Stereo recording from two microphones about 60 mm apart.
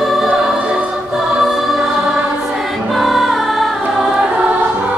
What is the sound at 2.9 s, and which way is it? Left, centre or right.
Music, centre.